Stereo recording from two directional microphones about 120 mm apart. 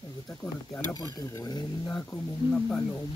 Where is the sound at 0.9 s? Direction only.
30° left (ahead or behind).